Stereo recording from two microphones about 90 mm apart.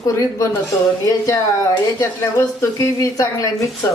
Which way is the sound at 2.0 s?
30° left (ahead or behind).